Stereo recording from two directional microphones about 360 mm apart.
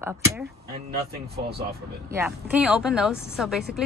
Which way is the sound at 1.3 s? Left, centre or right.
Right.